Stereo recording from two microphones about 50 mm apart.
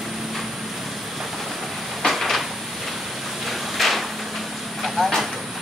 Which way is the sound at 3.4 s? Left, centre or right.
Centre.